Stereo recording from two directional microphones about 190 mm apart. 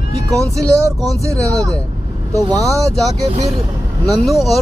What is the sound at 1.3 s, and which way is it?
Speech, 15° right (ahead or behind).